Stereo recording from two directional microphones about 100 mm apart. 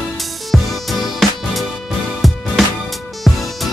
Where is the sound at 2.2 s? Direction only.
Centre (ahead or behind).